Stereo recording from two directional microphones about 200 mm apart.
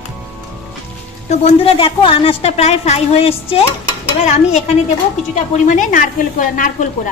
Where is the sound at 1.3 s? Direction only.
30° left (ahead or behind).